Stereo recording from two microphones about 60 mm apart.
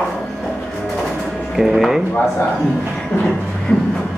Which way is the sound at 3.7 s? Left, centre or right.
Left.